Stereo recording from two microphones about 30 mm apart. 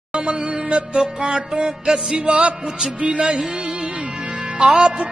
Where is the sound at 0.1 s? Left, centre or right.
Right.